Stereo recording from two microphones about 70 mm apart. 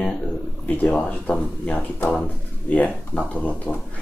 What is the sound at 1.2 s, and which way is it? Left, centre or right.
Speech, left.